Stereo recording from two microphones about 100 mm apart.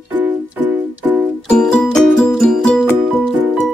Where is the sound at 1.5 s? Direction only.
10° left (ahead or behind).